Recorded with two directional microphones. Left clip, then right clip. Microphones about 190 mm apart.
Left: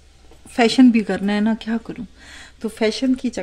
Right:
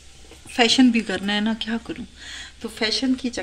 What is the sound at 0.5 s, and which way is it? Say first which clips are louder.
Speech: left 2 dB; 60° left (ahead or behind).